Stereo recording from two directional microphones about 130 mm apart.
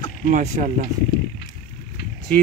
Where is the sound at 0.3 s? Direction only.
70° right (ahead or behind).